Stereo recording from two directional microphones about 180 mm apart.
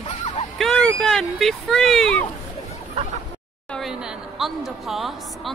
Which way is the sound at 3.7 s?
Centre (ahead or behind).